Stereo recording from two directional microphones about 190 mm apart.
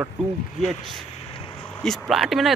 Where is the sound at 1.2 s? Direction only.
30° left (ahead or behind).